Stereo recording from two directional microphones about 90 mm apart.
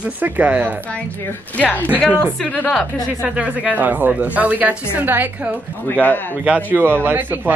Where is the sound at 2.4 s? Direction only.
20° left (ahead or behind).